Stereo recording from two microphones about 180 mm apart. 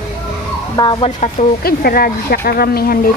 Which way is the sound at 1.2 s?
50° left (ahead or behind).